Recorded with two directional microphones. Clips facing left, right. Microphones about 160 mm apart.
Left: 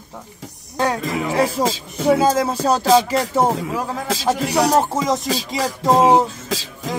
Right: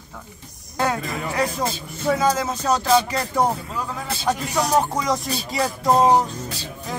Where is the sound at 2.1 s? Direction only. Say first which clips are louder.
Left 4 dB; 30° left (ahead or behind).